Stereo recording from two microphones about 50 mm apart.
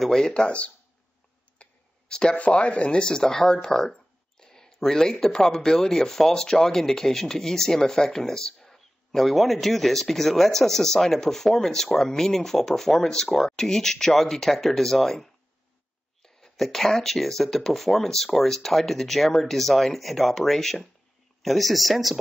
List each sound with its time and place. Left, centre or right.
0.0 s speech: centre
0.3 s speech: left
1.6 s clicking: centre
2.3 s speech: left; by 22.2 s centre